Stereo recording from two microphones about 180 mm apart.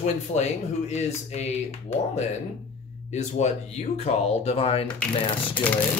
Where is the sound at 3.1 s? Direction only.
40° left (ahead or behind).